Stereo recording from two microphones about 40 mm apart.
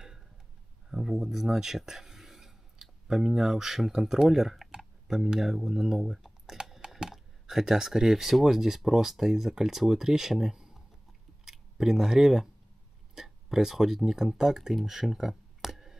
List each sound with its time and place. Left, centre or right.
0.8 s speech: centre
4.6 s typing: centre
5.4 s speech: centre
6.5 s typing: centre
7.0 s speech: centre